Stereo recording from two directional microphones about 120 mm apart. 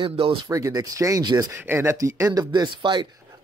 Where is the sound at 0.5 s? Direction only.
30° right (ahead or behind).